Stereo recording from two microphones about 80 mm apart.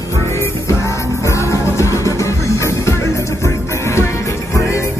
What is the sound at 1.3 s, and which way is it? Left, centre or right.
Music, left.